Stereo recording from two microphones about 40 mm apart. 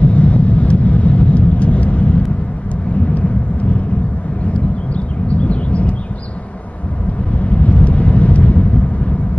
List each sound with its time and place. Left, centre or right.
0.0 s vehicle: left
4.6 s a sound: left
7.3 s vehicle: left